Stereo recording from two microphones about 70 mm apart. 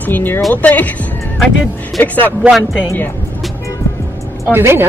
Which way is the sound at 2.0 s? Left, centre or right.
Left.